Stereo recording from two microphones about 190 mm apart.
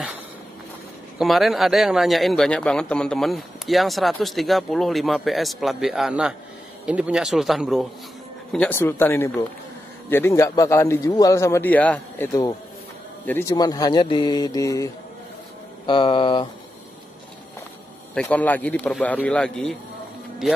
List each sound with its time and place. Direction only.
1.1 s a man's voice: centre (ahead or behind)
13.3 s speech: 15° left (ahead or behind)
15.9 s speech: 25° left (ahead or behind)
18.1 s a man's voice: 10° left (ahead or behind)